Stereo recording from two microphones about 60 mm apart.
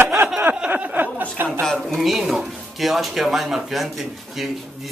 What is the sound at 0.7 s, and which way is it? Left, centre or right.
Speech, right.